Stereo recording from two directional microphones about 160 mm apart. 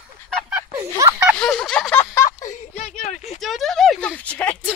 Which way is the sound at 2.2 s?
50° left (ahead or behind).